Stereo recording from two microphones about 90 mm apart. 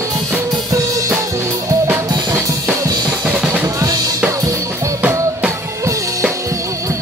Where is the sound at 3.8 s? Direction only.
40° right (ahead or behind).